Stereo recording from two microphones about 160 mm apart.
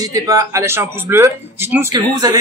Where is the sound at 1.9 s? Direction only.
25° right (ahead or behind).